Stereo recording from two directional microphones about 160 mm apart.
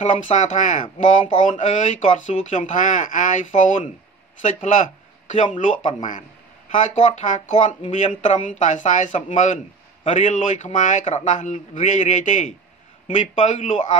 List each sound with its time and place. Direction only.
0.0 s speech: 45° left (ahead or behind)
5.3 s speech: 50° left (ahead or behind)